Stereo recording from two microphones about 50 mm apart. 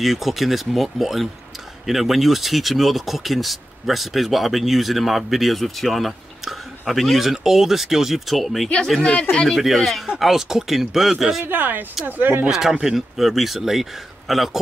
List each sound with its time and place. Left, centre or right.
0.0 s speech: centre
9.0 s speech: centre
9.5 s speech: centre
11.4 s speech: right
12.4 s speech: centre